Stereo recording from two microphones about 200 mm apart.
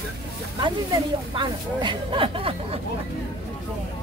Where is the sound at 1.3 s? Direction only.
25° right (ahead or behind).